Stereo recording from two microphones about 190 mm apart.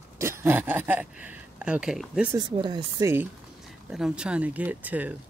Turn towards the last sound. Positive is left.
turn(degrees=-10)  # may be behind; listen again after turning